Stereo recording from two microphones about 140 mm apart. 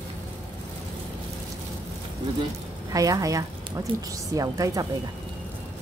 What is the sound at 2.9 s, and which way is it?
A woman's voice, 25° right (ahead or behind).